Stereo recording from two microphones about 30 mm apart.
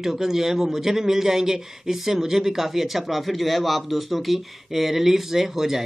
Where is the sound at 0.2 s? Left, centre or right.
Centre.